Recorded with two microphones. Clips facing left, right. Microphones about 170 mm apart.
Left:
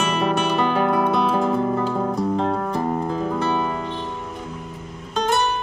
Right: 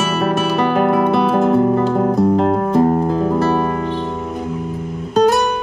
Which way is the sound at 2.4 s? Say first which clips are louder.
Right 9 dB; 35° right (ahead or behind).